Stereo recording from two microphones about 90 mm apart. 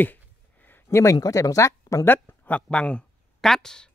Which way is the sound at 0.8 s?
35° left (ahead or behind).